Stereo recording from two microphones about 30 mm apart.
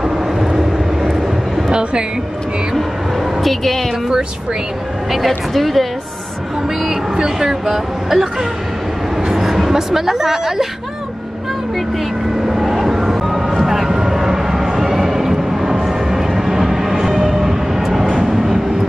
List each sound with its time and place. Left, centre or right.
0.0 s vehicle: centre
1.7 s a sound: right
3.3 s a woman's voice: centre
5.5 s a woman's voice: centre
6.8 s a sound: right
7.3 s speech: centre
12.4 s vehicle: centre
14.1 s a sound: centre
18.2 s train: centre